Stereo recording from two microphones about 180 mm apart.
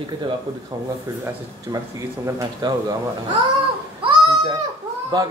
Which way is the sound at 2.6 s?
25° right (ahead or behind).